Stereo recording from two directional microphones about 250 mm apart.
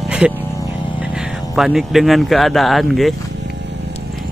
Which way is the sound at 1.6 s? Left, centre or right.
Centre.